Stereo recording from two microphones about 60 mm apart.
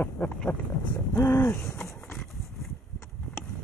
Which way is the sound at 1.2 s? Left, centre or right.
Left.